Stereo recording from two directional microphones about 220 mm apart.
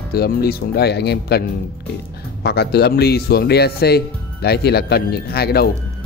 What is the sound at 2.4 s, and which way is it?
Speech, 45° left (ahead or behind).